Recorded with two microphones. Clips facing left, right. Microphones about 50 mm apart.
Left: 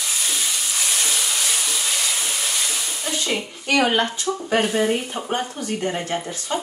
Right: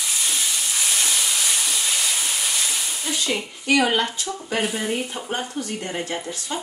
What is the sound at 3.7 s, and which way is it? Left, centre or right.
Speech, centre.